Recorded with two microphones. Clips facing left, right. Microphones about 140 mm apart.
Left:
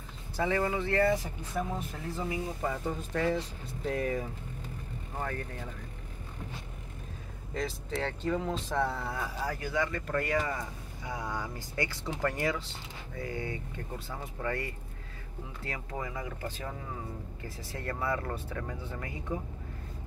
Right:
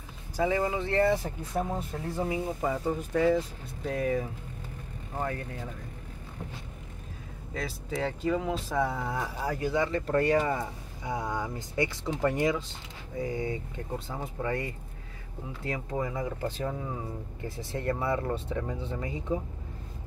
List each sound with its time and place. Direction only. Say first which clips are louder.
0.4 s speech: right 2 dB; 15° right (ahead or behind)
1.6 s speech: right 3 dB; 35° right (ahead or behind)
2.2 s speech: right 3 dB; 25° right (ahead or behind)
2.7 s speech: right 5 dB; 10° right (ahead or behind)
7.5 s speech: even; 5° right (ahead or behind)